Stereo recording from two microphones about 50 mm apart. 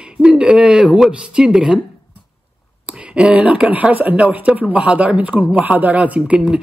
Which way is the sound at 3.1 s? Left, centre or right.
Right.